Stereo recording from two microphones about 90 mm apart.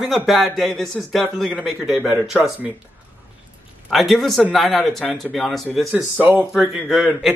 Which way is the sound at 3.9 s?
Centre (ahead or behind).